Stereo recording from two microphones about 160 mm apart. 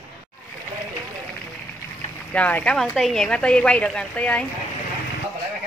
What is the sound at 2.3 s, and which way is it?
A woman's voice, 10° left (ahead or behind).